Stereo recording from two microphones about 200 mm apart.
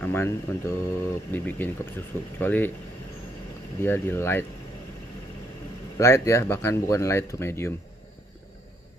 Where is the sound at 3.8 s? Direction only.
10° left (ahead or behind).